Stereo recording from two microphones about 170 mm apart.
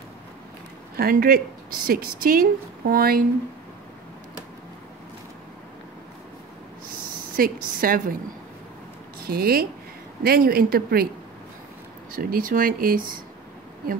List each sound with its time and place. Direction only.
0.9 s speech: 60° right (ahead or behind)
7.3 s speech: 55° right (ahead or behind)
9.2 s speech: 60° right (ahead or behind)
12.1 s speech: 60° right (ahead or behind)